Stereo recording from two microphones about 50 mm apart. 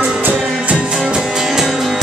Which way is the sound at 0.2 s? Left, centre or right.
Right.